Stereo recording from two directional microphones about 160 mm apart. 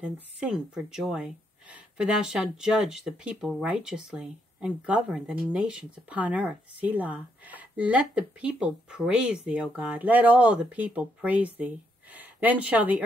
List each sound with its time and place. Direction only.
0.0 s speech: 5° right (ahead or behind)